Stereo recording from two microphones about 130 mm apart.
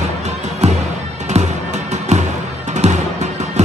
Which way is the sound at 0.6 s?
55° right (ahead or behind).